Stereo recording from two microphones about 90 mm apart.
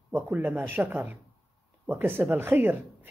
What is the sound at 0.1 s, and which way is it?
Speech, 20° right (ahead or behind).